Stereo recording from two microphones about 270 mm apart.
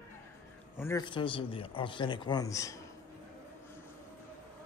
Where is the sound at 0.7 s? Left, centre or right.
Centre.